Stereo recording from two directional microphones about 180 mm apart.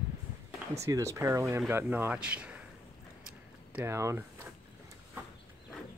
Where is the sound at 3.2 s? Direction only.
10° right (ahead or behind).